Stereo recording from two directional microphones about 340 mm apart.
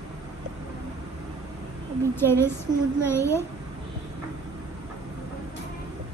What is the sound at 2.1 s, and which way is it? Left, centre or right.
A woman's voice, centre.